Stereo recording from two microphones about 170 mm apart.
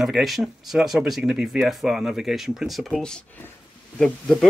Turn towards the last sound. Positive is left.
turn(degrees=5)  # may be behind; listen again after turning